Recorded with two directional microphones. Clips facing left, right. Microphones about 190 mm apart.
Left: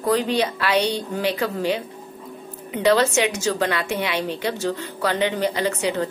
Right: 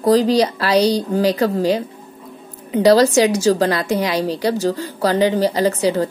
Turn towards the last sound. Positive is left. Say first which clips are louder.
# right 6 dB
turn(degrees=-35)  # may be behind; listen again after turning